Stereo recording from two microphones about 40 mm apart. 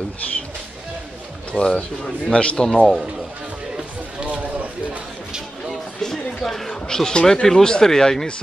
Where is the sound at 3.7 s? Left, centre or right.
Right.